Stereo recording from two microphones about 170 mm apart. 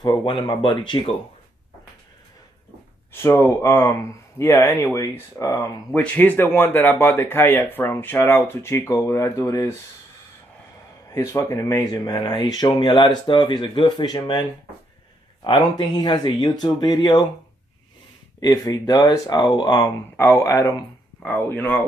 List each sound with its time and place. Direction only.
0.0 s speech: 30° left (ahead or behind)
3.1 s speech: 15° left (ahead or behind)
11.3 s speech: 20° left (ahead or behind)
15.4 s speech: 25° left (ahead or behind)
18.4 s speech: 20° left (ahead or behind)